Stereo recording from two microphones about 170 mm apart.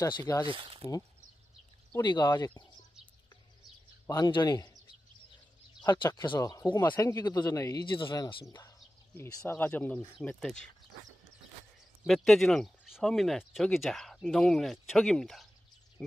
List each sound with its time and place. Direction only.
0.0 s speech: 20° left (ahead or behind)
0.5 s speech: 30° right (ahead or behind)
2.0 s speech: 25° left (ahead or behind)
4.1 s speech: 25° left (ahead or behind)
5.8 s speech: 25° left (ahead or behind); by 10.7 s 5° left (ahead or behind)
12.0 s speech: centre (ahead or behind)